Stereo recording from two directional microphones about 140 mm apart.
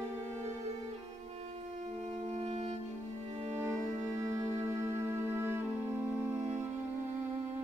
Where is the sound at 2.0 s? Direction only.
50° right (ahead or behind).